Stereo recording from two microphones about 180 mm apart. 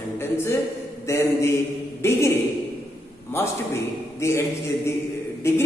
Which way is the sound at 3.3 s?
15° left (ahead or behind).